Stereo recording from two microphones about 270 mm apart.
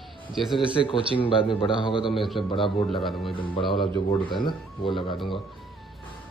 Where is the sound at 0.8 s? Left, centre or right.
Centre.